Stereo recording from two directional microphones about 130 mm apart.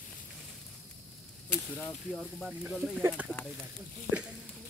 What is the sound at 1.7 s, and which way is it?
Speech, 15° left (ahead or behind).